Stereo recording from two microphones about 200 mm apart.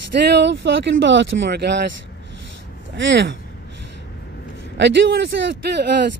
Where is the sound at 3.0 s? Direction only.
65° right (ahead or behind).